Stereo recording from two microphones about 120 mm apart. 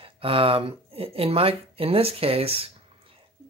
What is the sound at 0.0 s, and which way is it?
Speech, 50° right (ahead or behind).